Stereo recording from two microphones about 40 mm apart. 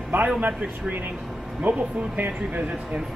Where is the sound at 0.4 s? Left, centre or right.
Right.